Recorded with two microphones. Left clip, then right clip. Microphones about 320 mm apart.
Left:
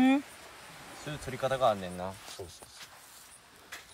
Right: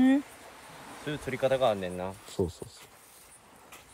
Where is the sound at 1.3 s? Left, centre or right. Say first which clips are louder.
Right 2 dB; left.